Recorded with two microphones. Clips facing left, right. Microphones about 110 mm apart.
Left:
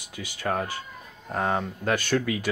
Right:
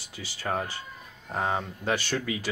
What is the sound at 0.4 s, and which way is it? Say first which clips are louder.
Speech: left 3 dB; centre (ahead or behind).